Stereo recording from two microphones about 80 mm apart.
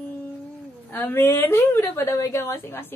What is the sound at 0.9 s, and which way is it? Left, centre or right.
A woman's voice, left.